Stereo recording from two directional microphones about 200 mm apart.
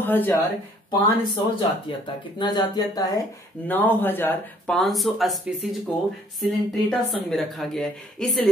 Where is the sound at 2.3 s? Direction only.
20° left (ahead or behind); by 5.4 s centre (ahead or behind).